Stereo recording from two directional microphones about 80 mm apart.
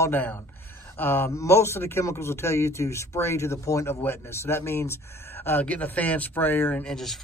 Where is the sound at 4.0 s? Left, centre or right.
Left.